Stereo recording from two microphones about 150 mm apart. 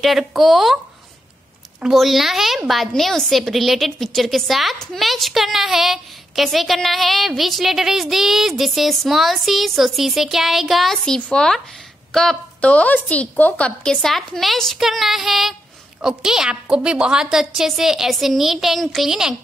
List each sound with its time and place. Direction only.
0.0 s a woman's voice: 5° right (ahead or behind)
1.8 s a woman's voice: centre (ahead or behind)